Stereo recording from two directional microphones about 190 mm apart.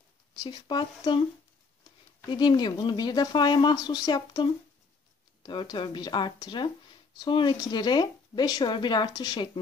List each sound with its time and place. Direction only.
0.4 s speech: 25° left (ahead or behind)
2.3 s speech: 25° left (ahead or behind)